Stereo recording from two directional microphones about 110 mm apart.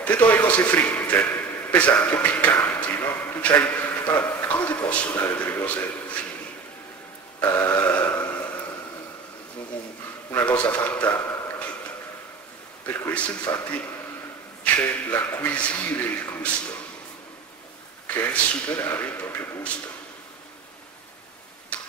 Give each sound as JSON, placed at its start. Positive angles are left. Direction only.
{"t": 0.0, "sound": "a man's voice", "side_deg": 10}
{"t": 7.3, "sound": "a sound", "side_deg": 20}
{"t": 10.3, "sound": "a man's voice", "side_deg": 10}
{"t": 12.8, "sound": "speech", "side_deg": 15}
{"t": 14.6, "sound": "speech", "side_deg": 15}
{"t": 18.0, "sound": "speech", "side_deg": 15}
{"t": 21.7, "sound": "tick-tock", "side_deg": 10}